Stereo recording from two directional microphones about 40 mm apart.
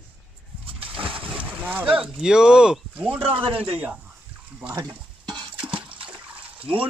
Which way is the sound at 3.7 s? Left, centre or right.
Right.